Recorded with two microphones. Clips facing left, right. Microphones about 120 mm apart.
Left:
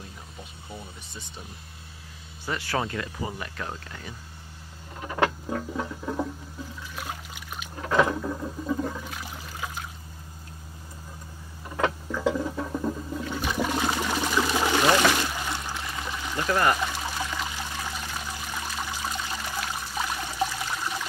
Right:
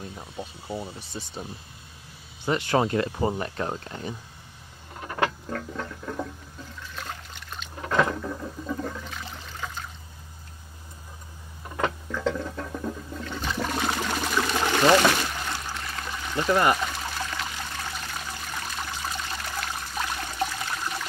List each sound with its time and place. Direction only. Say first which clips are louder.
0.4 s speech: right 9 dB; 30° right (ahead or behind)
2.4 s speech: right 6 dB; 20° right (ahead or behind)
3.2 s speech: right 7 dB; 35° right (ahead or behind)
5.0 s patter: left 2 dB; 10° left (ahead or behind)
7.0 s water: left 1 dB; 10° left (ahead or behind)
11.8 s toilet flush: left 1 dB; 10° left (ahead or behind)
16.7 s pour: even; 5° left (ahead or behind)